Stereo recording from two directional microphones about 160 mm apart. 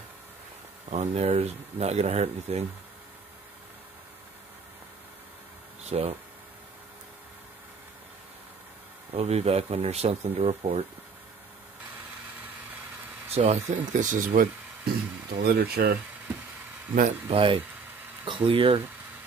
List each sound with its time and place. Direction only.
0.8 s speech: 45° right (ahead or behind)
5.9 s speech: 40° right (ahead or behind)
9.1 s speech: 40° right (ahead or behind)
13.3 s speech: 40° right (ahead or behind)
13.9 s speech: 55° right (ahead or behind); by 16.0 s 75° right (ahead or behind)
17.3 s speech: 35° right (ahead or behind)